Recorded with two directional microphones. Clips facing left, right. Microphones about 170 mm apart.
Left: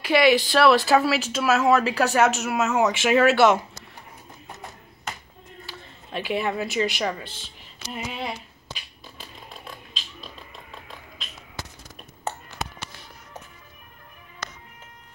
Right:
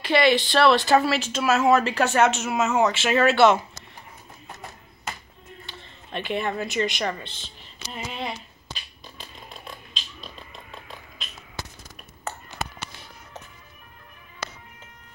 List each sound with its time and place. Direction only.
0.0 s speech: 10° left (ahead or behind)
2.9 s speech: 10° left (ahead or behind)
5.7 s a sound: 5° left (ahead or behind)